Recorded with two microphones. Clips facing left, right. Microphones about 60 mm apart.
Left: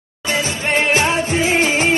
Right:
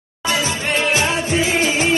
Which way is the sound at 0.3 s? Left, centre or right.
Left.